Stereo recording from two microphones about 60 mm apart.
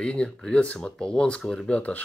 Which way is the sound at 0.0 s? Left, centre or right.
Centre.